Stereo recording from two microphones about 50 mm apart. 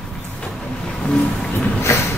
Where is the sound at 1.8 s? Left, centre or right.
Left.